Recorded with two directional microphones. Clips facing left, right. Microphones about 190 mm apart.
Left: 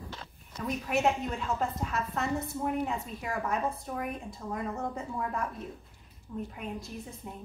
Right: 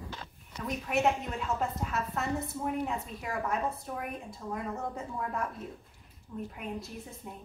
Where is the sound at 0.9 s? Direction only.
Centre (ahead or behind).